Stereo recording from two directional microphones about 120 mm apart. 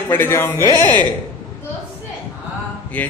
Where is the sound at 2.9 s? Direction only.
10° left (ahead or behind).